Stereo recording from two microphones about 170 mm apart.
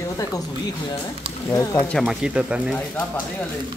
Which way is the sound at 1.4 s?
20° left (ahead or behind).